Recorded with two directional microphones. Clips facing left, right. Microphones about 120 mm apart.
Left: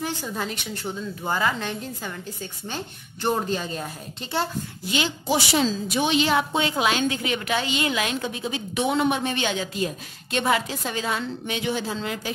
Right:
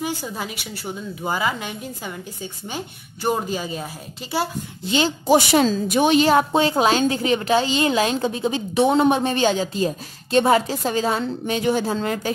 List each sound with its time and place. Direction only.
0.0 s a woman's voice: 10° right (ahead or behind)
4.8 s a woman's voice: 30° right (ahead or behind)
5.2 s a woman's voice: 50° right (ahead or behind)